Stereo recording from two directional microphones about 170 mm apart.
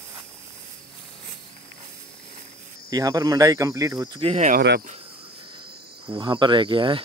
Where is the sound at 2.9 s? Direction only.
20° right (ahead or behind).